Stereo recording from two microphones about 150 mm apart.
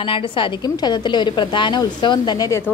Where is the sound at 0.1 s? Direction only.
30° left (ahead or behind).